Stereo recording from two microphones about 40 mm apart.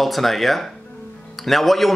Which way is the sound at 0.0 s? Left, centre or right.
Centre.